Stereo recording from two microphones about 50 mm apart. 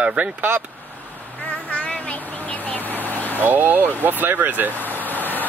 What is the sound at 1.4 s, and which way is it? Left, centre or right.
Vehicle, left.